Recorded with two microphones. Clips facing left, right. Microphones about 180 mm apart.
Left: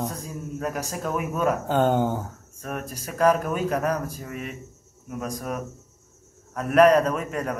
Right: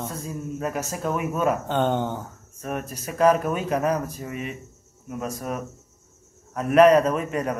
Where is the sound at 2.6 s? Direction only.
5° right (ahead or behind).